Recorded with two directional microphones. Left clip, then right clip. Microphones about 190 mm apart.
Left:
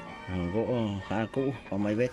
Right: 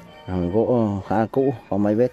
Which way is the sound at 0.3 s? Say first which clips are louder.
Right 10 dB; 20° right (ahead or behind).